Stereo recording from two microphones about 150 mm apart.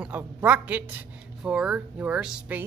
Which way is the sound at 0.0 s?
10° right (ahead or behind).